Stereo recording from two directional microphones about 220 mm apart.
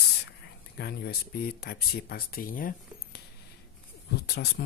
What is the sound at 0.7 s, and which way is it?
Speech, 45° left (ahead or behind).